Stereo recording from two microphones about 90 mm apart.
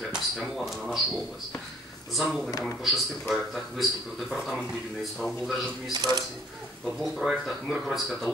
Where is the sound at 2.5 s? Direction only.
40° left (ahead or behind).